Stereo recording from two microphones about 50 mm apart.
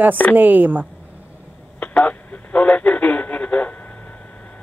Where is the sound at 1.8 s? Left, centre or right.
Left.